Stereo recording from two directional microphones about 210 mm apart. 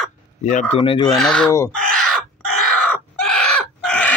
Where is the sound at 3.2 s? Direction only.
5° left (ahead or behind).